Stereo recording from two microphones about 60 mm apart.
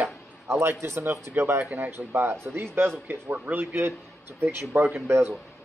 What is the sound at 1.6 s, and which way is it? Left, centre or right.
Speech, right.